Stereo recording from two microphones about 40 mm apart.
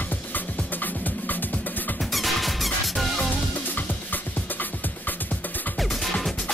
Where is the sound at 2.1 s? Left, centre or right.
Centre.